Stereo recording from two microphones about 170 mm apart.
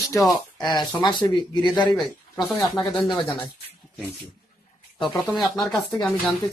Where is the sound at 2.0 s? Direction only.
10° left (ahead or behind).